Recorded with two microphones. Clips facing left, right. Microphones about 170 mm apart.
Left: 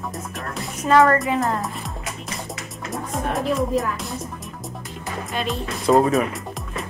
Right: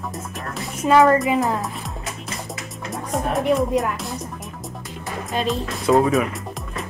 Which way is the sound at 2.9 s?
Centre (ahead or behind).